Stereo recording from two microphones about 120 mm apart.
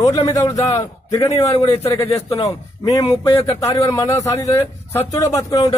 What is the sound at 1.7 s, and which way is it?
A man's voice, 25° left (ahead or behind).